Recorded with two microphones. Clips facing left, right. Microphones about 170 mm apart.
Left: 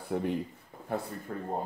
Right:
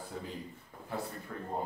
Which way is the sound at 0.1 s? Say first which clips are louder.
Left 13 dB; 65° left (ahead or behind).